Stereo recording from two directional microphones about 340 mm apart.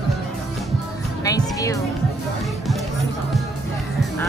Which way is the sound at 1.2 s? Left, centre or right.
Centre.